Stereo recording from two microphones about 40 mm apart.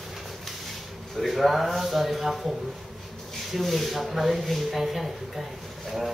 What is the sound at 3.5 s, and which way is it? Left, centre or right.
Speech, centre.